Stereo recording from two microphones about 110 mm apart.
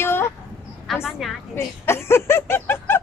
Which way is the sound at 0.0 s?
20° left (ahead or behind).